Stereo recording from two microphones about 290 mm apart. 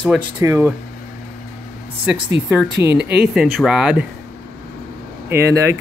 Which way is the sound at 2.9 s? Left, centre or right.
Right.